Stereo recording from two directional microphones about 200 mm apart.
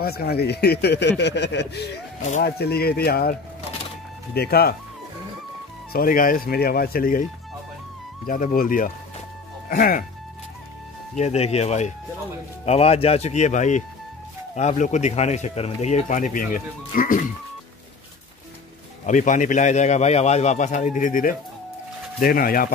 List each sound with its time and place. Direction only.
0.0 s a man's voice: 50° left (ahead or behind)
5.9 s speech: 45° left (ahead or behind)
8.3 s speech: 45° left (ahead or behind)
11.1 s speech: 30° left (ahead or behind)
19.0 s speech: 40° left (ahead or behind)